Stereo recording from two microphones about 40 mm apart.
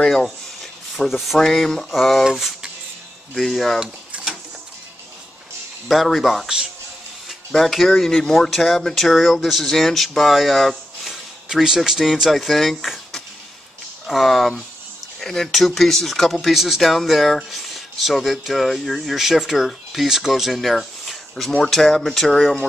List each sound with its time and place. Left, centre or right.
0.1 s a sound: centre
1.0 s speech: centre
4.1 s a sound: right
5.9 s speech: centre
6.4 s speech: centre
7.2 s speech: centre
11.5 s speech: centre